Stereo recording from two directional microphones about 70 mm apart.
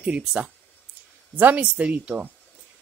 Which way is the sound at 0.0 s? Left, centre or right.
Centre.